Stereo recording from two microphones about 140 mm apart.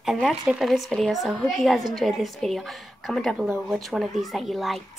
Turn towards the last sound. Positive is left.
turn(degrees=0)  # may be behind; listen again after turning